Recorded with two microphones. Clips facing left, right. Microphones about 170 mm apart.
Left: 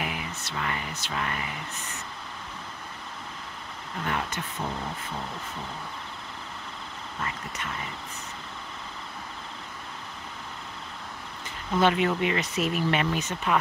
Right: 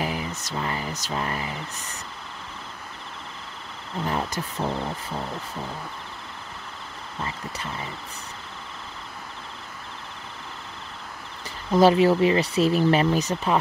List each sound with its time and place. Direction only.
0.0 s a sound: 35° right (ahead or behind)
4.0 s speech: 35° right (ahead or behind)
7.2 s speech: 30° right (ahead or behind)
11.7 s speech: 35° right (ahead or behind)